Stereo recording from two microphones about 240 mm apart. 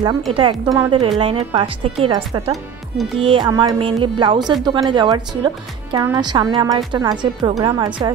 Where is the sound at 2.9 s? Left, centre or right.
Centre.